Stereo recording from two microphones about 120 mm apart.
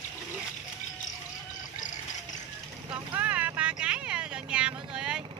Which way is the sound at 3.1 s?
15° right (ahead or behind).